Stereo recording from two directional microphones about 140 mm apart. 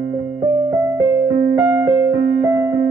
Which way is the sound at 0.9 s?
15° right (ahead or behind).